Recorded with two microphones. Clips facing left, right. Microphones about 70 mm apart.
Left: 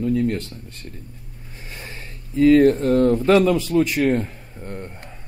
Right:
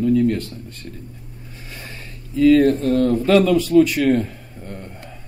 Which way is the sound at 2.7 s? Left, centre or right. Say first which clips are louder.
Left 1 dB; left.